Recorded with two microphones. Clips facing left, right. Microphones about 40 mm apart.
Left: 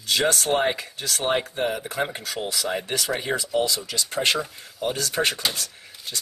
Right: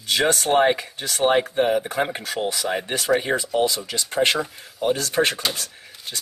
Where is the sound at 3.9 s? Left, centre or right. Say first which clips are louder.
Right 3 dB; right.